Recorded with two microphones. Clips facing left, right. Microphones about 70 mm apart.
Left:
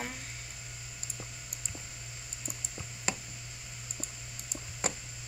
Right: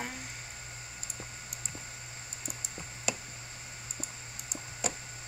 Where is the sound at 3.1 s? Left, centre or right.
Left.